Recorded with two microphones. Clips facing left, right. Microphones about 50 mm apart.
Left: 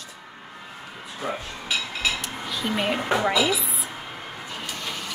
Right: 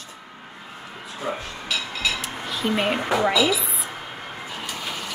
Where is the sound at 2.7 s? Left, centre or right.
Centre.